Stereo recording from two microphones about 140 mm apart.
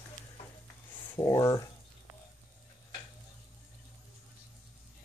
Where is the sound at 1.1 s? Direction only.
25° left (ahead or behind).